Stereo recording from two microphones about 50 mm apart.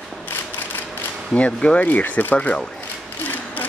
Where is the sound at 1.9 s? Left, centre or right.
Left.